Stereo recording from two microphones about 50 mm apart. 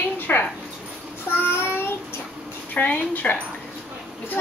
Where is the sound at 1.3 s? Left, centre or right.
Left.